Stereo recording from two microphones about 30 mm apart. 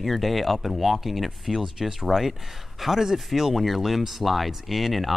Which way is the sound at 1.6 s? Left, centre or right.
Centre.